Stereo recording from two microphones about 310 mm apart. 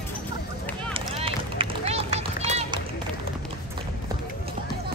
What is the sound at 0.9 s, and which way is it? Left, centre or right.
Run, centre.